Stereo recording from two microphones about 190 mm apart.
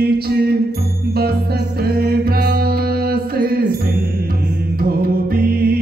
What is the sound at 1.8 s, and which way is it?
Music, 55° right (ahead or behind).